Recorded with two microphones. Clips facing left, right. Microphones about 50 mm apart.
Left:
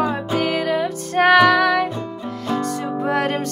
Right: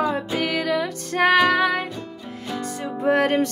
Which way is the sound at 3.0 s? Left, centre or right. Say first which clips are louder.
Right 2 dB; right.